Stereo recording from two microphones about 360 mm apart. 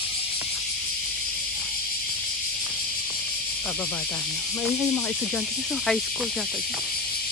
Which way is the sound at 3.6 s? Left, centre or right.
Centre.